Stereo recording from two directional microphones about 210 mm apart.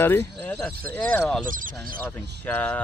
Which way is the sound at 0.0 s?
10° left (ahead or behind).